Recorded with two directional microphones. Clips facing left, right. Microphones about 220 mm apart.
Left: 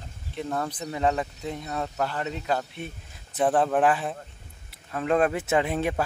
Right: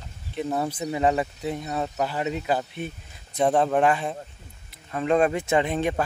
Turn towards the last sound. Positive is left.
turn(degrees=5)  # may be behind; listen again after turning